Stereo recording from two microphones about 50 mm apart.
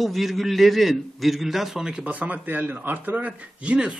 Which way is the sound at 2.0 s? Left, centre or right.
Right.